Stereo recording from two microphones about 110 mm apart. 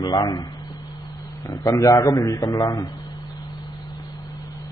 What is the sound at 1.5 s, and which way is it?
A man's voice, 30° left (ahead or behind).